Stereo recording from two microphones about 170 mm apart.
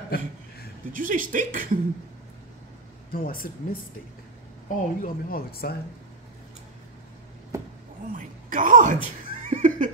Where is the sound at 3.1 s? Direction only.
60° left (ahead or behind).